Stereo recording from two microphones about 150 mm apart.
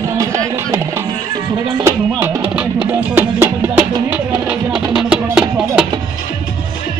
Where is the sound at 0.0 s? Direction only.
20° right (ahead or behind).